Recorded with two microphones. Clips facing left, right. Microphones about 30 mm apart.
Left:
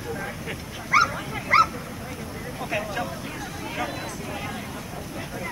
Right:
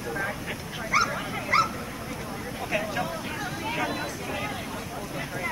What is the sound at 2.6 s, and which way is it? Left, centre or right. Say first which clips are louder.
Speech: even; centre.